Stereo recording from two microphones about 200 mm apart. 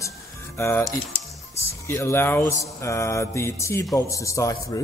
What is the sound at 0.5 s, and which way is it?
Speech, 15° left (ahead or behind).